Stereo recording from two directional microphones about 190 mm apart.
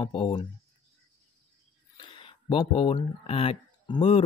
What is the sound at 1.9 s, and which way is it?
Speech, 25° left (ahead or behind).